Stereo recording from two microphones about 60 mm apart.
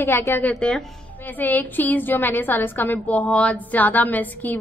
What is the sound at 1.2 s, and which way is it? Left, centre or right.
A woman's voice, left.